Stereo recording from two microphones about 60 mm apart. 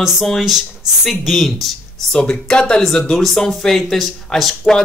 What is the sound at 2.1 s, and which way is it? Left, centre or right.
Speech, centre.